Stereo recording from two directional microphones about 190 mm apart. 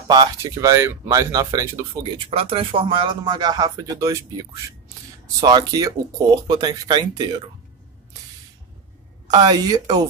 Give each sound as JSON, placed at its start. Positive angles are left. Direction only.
{"t": 0.1, "sound": "speech", "side_deg": -20}
{"t": 2.1, "sound": "speech", "side_deg": -30}
{"t": 9.3, "sound": "speech", "side_deg": -20}